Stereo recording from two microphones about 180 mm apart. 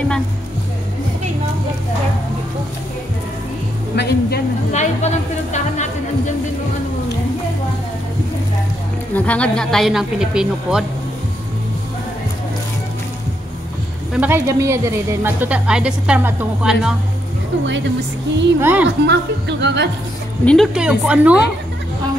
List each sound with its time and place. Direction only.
3.9 s music: 65° left (ahead or behind)
4.7 s speech: 40° left (ahead or behind)
9.1 s speech: 5° left (ahead or behind)
14.1 s speech: 10° right (ahead or behind)
18.6 s speech: 10° right (ahead or behind)
19.0 s speech: 70° right (ahead or behind)
20.4 s speech: centre (ahead or behind)